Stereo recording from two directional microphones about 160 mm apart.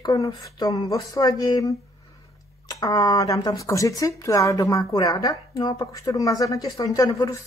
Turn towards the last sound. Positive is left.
turn(degrees=20)  # may be behind; listen again after turning